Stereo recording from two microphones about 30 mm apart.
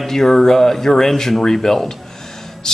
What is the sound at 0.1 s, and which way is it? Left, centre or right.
Speech, centre.